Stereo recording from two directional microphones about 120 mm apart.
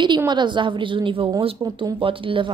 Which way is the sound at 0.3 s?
40° right (ahead or behind).